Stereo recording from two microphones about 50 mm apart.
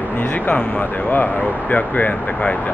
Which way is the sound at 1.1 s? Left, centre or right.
Left.